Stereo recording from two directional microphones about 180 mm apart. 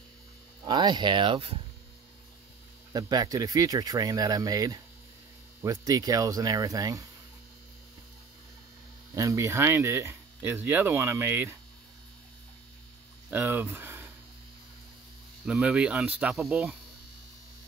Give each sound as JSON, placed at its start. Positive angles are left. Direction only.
{"t": 0.7, "sound": "speech", "side_deg": -25}
{"t": 2.9, "sound": "speech", "side_deg": -20}
{"t": 9.1, "sound": "speech", "side_deg": -15}
{"t": 13.3, "sound": "speech", "side_deg": -10}
{"t": 15.4, "sound": "cricket", "side_deg": -5}